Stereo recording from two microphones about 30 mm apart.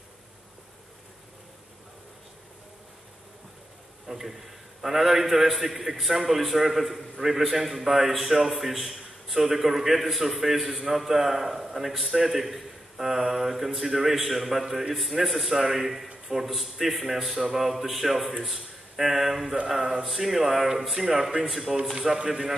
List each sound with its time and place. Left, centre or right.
4.1 s a man's voice: centre
21.5 s a man's voice: centre
22.2 s a man's voice: right